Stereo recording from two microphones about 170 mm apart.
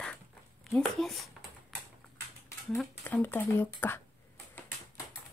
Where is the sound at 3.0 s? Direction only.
10° left (ahead or behind).